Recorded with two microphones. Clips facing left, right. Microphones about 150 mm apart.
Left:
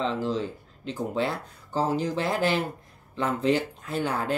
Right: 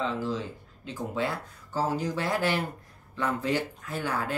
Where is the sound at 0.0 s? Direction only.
30° left (ahead or behind).